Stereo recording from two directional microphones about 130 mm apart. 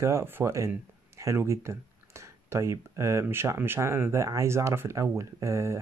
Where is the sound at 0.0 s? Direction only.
20° right (ahead or behind).